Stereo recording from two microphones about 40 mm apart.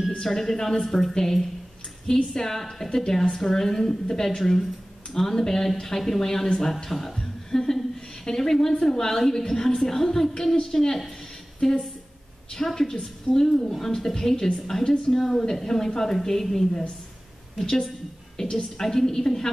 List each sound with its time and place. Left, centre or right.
0.2 s a woman's voice: centre